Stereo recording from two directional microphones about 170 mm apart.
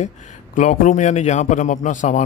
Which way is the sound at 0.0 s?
45° left (ahead or behind).